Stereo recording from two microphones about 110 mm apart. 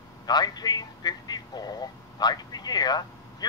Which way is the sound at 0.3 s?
40° left (ahead or behind).